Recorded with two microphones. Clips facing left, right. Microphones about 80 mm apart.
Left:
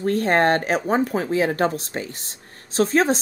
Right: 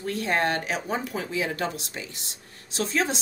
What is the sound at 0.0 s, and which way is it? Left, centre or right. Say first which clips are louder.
Speech: left 7 dB; left.